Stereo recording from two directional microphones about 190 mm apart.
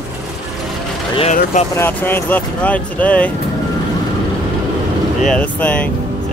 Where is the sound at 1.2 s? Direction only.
35° left (ahead or behind).